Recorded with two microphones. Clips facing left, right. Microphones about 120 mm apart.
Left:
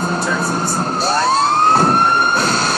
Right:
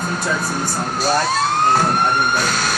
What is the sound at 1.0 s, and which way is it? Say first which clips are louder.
Vehicle: left 2 dB; 30° left (ahead or behind).